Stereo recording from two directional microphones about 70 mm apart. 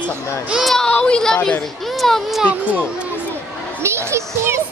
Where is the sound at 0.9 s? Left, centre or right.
Centre.